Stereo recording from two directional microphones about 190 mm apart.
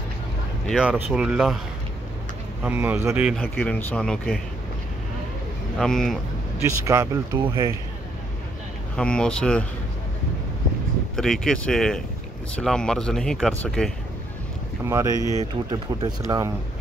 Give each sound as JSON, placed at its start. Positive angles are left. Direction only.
{"t": 0.7, "sound": "speech", "side_deg": -5}
{"t": 2.6, "sound": "speech", "side_deg": -10}
{"t": 3.3, "sound": "speech", "side_deg": 5}
{"t": 5.8, "sound": "speech", "side_deg": 0}
{"t": 6.6, "sound": "speech", "side_deg": -15}
{"t": 8.9, "sound": "speech", "side_deg": 5}
{"t": 11.1, "sound": "speech", "side_deg": 0}
{"t": 14.9, "sound": "speech", "side_deg": -15}